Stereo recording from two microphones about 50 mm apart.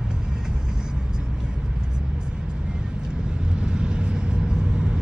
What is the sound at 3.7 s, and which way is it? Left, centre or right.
Vehicle, centre.